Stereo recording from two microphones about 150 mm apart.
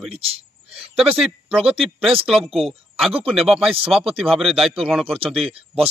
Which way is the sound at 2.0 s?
40° right (ahead or behind).